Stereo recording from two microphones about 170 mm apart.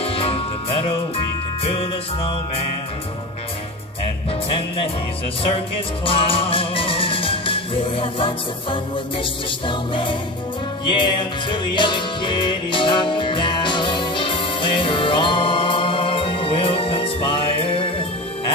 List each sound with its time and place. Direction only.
0.0 s music: 35° left (ahead or behind)
6.0 s music: 30° left (ahead or behind)